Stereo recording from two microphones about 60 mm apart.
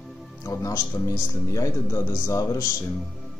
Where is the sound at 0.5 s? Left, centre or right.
Left.